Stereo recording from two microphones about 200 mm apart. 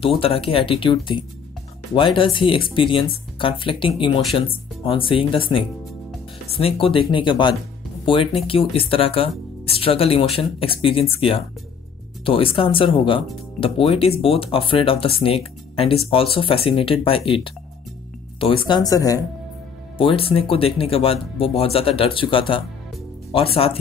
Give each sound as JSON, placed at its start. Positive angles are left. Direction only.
{"t": 0.2, "sound": "speech", "side_deg": 25}